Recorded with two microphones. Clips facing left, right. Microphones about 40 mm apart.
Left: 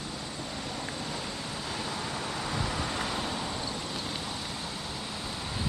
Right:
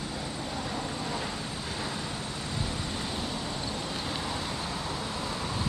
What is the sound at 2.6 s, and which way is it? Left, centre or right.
Vehicle, left.